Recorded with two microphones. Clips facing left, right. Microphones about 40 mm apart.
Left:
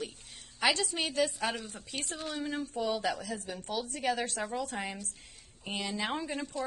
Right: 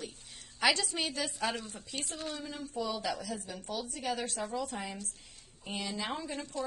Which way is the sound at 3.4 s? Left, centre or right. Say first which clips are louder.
Left 3 dB; left.